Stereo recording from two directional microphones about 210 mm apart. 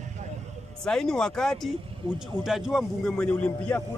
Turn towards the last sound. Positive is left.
turn(degrees=5)  # may be behind; listen again after turning